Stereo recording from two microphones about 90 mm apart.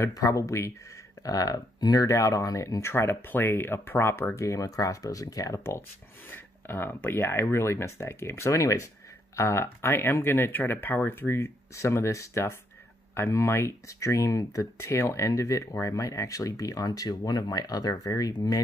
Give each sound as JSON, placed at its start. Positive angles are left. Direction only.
{"t": 0.0, "sound": "speech", "side_deg": 35}
{"t": 4.4, "sound": "speech", "side_deg": 40}
{"t": 6.3, "sound": "speech", "side_deg": 25}